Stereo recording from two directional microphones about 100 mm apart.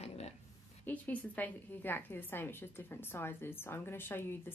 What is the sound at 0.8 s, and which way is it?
A woman's voice, 15° left (ahead or behind).